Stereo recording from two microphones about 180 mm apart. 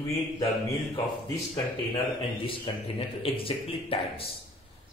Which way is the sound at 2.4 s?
30° left (ahead or behind).